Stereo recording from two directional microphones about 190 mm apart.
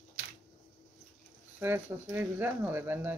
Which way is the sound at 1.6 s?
10° right (ahead or behind).